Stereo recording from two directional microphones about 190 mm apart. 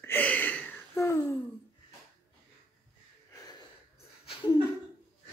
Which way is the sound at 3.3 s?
20° left (ahead or behind).